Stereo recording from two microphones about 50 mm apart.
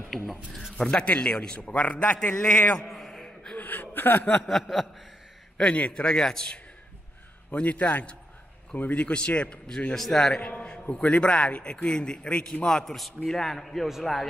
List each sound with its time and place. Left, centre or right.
0.3 s speech: centre
0.7 s a man's voice: centre
1.6 s a man's voice: left
2.9 s a sound: centre
3.5 s speech: left
4.5 s speech: centre
5.6 s a man's voice: left
7.5 s a man's voice: left
9.0 s a man's voice: left
9.9 s a man's voice: centre
10.4 s a man's voice: left; by 13.8 s centre